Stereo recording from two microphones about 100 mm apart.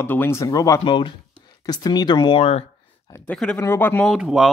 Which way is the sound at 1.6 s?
40° left (ahead or behind).